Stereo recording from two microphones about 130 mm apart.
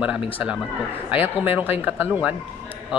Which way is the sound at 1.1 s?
15° right (ahead or behind).